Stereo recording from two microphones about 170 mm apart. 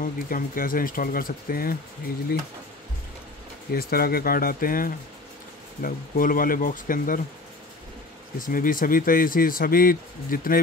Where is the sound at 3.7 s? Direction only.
60° left (ahead or behind).